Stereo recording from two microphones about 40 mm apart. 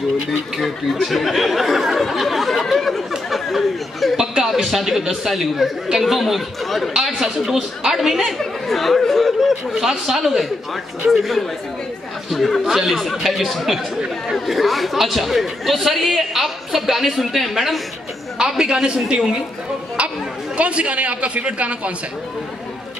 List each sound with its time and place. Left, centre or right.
0.3 s speech: centre
1.0 s a sound: centre
2.7 s chatter: centre
4.2 s a sound: centre
4.6 s speech: centre
7.0 s speech: centre
12.3 s speech: centre
18.4 s a man's voice: right
20.5 s a man's voice: right